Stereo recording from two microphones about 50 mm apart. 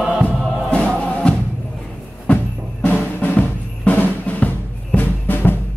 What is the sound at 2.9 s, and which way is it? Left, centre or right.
Drum, left.